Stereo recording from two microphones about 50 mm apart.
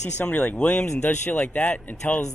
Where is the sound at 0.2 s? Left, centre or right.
Left.